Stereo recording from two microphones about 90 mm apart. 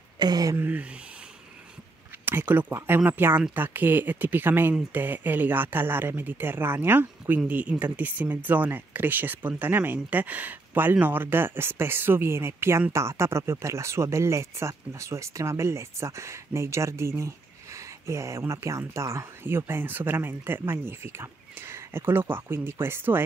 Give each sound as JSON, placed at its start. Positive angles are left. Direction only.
{"t": 0.2, "sound": "speech", "side_deg": -45}
{"t": 0.6, "sound": "speech", "side_deg": -20}
{"t": 2.2, "sound": "speech", "side_deg": -20}